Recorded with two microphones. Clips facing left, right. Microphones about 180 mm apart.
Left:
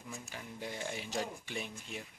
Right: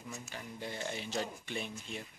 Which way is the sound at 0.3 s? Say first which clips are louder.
Even; 10° left (ahead or behind).